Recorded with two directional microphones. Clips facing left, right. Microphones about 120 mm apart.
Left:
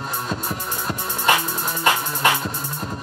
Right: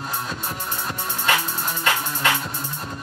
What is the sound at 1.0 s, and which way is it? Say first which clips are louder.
Music: left 3 dB; 15° left (ahead or behind).